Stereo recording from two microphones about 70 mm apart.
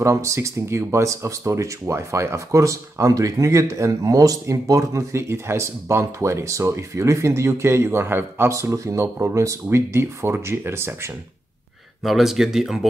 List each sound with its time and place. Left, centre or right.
0.0 s speech: right
8.5 s speech: right
12.0 s speech: centre